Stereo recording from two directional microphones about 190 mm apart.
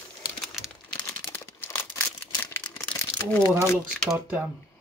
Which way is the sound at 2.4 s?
15° left (ahead or behind).